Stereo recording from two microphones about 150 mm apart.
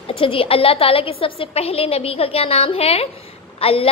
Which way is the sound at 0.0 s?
35° left (ahead or behind).